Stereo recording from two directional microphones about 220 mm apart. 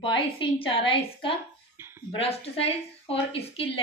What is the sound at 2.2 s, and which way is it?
A woman's voice, 25° left (ahead or behind).